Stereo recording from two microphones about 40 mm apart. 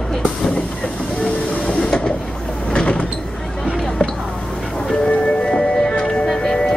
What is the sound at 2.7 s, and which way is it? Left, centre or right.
Vehicle, left.